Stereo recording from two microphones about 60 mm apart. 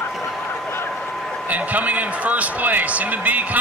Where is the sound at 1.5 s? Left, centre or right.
Right.